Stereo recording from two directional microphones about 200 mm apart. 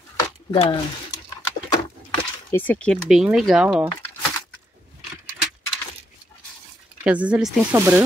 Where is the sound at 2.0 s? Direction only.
10° left (ahead or behind).